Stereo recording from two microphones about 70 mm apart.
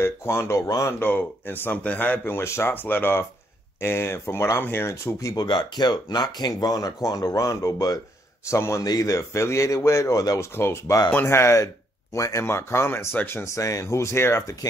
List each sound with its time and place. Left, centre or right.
0.0 s speech: left
1.0 s speech: left
5.3 s speech: left
8.5 s speech: left
8.8 s a man's voice: left
10.5 s speech: left
12.4 s speech: left
14.6 s speech: left